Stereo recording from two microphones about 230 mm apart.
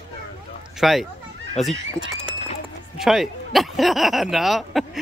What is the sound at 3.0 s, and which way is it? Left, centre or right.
Speech, centre.